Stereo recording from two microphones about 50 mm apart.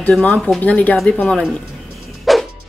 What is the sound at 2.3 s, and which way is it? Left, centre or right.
Music, centre.